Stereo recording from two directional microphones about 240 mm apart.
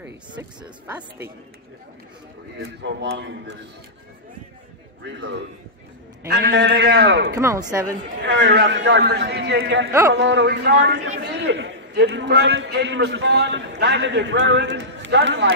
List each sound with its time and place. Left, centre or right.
0.3 s speech: centre
2.6 s a man's voice: right
5.0 s a man's voice: right
7.3 s speech: centre
8.3 s a man's voice: right